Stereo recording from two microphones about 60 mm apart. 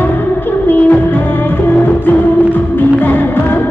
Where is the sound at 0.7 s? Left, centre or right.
Left.